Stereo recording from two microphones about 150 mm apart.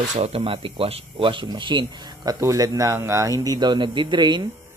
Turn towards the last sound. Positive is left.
turn(degrees=-30)  # may be behind; listen again after turning